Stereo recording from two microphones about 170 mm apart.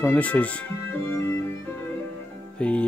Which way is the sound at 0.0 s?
10° left (ahead or behind).